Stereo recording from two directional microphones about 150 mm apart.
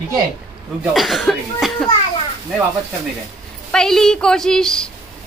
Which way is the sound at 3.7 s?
5° left (ahead or behind).